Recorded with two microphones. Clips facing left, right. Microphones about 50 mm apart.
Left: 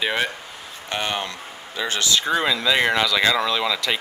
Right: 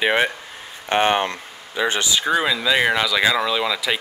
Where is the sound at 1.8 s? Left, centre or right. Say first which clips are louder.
Right 2 dB; centre.